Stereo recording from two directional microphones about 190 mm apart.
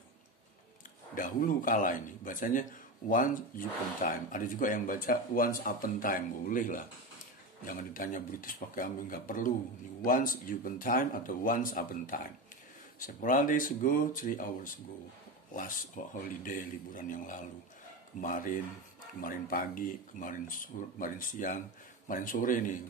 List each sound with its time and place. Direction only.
1.1 s speech: 45° left (ahead or behind)